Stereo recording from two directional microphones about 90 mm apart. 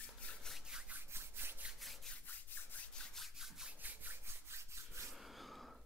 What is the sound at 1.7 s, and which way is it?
Rub, centre (ahead or behind).